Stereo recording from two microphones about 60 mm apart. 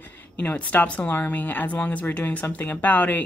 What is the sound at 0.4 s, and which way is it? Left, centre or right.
Speech, left.